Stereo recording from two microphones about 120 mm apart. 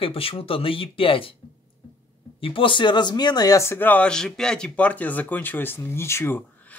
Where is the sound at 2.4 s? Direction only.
45° left (ahead or behind); by 6.8 s 15° left (ahead or behind).